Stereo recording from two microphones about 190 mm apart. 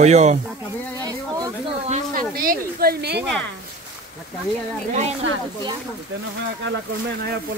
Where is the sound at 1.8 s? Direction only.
35° right (ahead or behind).